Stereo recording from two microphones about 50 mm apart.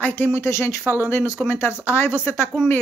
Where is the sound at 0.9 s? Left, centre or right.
Left.